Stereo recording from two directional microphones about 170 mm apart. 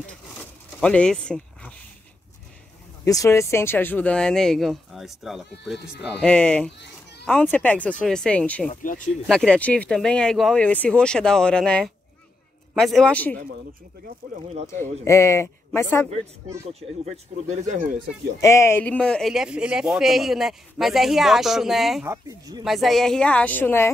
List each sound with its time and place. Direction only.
0.7 s speech: 5° left (ahead or behind)
3.1 s speech: 20° left (ahead or behind)
8.6 s speech: 50° left (ahead or behind)
9.3 s speech: 5° left (ahead or behind)
14.2 s speech: 55° right (ahead or behind)
14.7 s speech: 15° left (ahead or behind)
17.0 s speech: 40° right (ahead or behind)
18.4 s speech: 15° left (ahead or behind); by 22.0 s centre (ahead or behind)
22.0 s speech: 20° right (ahead or behind)
22.7 s speech: centre (ahead or behind)